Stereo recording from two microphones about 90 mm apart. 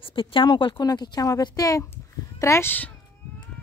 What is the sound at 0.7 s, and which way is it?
Speech, 50° left (ahead or behind).